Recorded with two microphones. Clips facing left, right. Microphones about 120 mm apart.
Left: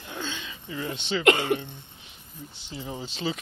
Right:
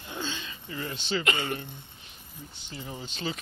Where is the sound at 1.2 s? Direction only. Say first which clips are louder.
Left 13 dB; 75° left (ahead or behind).